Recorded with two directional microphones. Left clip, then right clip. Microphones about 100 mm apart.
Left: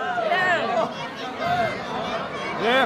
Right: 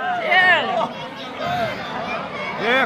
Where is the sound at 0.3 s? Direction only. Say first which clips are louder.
Right 8 dB; 40° right (ahead or behind).